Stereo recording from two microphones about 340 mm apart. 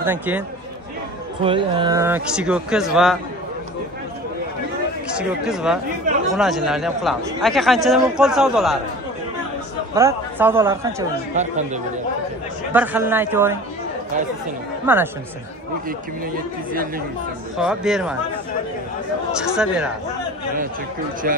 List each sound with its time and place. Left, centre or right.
0.0 s a man's voice: centre
1.4 s a man's voice: centre
5.1 s a man's voice: centre
9.9 s a man's voice: centre
11.3 s speech: right
12.7 s a man's voice: centre
17.6 s a man's voice: centre
19.3 s a man's voice: centre
21.2 s speech: right